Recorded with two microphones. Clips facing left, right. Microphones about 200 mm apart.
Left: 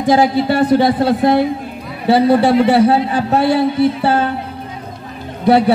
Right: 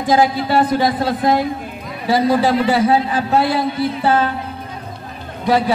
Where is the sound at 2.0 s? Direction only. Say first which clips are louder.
Left 4 dB; 60° left (ahead or behind).